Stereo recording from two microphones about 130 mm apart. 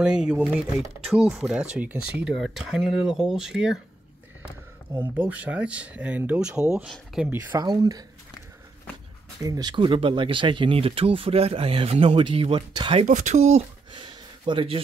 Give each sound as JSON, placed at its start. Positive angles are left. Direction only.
{"t": 0.0, "sound": "speech", "side_deg": -5}
{"t": 5.1, "sound": "speech", "side_deg": -10}
{"t": 7.5, "sound": "speech", "side_deg": -35}
{"t": 9.4, "sound": "speech", "side_deg": -30}
{"t": 13.0, "sound": "speech", "side_deg": -65}
{"t": 13.9, "sound": "a sound", "side_deg": -40}